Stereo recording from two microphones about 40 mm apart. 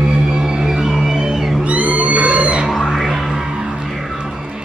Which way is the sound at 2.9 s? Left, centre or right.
Centre.